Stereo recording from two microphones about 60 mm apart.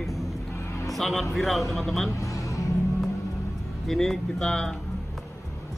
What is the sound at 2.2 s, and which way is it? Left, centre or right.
Music, left.